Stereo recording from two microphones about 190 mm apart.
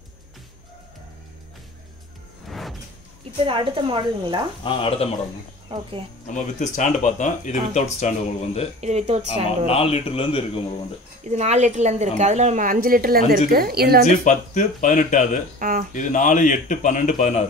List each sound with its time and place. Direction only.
3.4 s a woman's voice: 25° right (ahead or behind)
4.6 s a man's voice: 30° left (ahead or behind)
5.7 s a woman's voice: 25° right (ahead or behind)
6.2 s speech: 40° left (ahead or behind)
8.8 s a woman's voice: 35° right (ahead or behind)
9.7 s a man's voice: 30° left (ahead or behind)
11.2 s a woman's voice: 35° right (ahead or behind); by 14.0 s 55° right (ahead or behind)
14.0 s speech: 40° left (ahead or behind)
15.6 s speech: 45° right (ahead or behind)
15.9 s speech: 40° left (ahead or behind)